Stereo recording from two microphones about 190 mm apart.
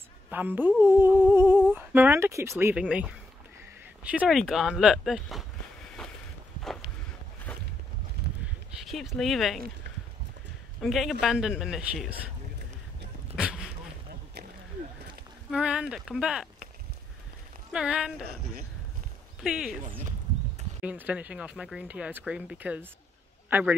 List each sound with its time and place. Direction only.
0.3 s speech: 10° right (ahead or behind)
7.5 s a sound: 5° left (ahead or behind)
8.2 s a sound: 60° right (ahead or behind)
8.8 s speech: centre (ahead or behind)
10.8 s speech: centre (ahead or behind)
13.4 s dog: 5° right (ahead or behind)
15.5 s speech: 5° right (ahead or behind)
17.7 s speech: 5° right (ahead or behind)
19.4 s speech: 5° right (ahead or behind)
20.8 s speech: 5° right (ahead or behind)